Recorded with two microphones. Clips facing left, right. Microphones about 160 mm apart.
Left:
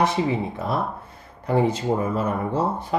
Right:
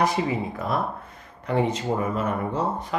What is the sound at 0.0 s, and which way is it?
Speech, 25° left (ahead or behind).